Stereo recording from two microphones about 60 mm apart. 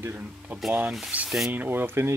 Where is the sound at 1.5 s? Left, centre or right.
Right.